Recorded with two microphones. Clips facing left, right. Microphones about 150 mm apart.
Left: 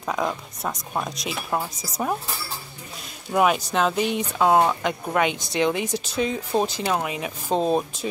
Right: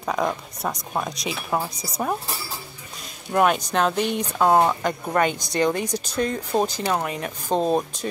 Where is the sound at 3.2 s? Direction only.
Centre (ahead or behind).